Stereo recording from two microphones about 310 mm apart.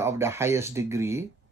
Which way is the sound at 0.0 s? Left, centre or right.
Centre.